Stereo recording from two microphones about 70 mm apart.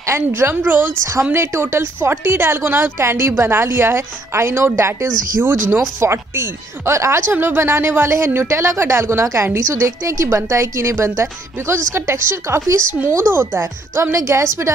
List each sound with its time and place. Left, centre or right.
0.0 s speech: right
3.0 s speech: right
14.1 s a woman's voice: right